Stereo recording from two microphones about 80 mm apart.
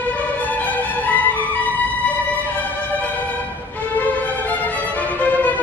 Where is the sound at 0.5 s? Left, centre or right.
Left.